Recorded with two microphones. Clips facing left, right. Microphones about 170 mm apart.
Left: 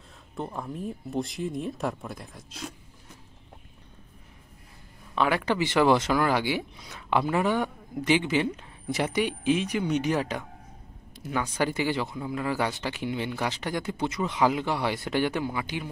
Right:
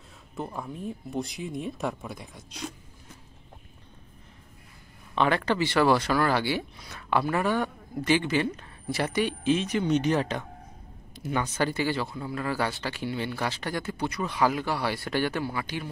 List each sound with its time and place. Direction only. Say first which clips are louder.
0.4 s speech: left 1 dB; centre (ahead or behind)
5.1 s speech: right 1 dB; 5° left (ahead or behind)
5.4 s speech: even; 15° left (ahead or behind); by 11.5 s centre (ahead or behind)
11.5 s speech: left 2 dB; 15° left (ahead or behind)